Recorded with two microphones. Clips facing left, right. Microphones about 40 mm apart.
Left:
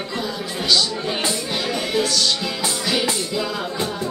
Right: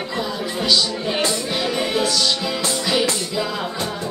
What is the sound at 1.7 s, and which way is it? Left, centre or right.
Music, centre.